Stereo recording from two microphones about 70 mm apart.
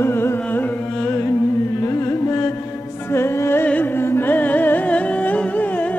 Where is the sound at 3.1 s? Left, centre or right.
Left.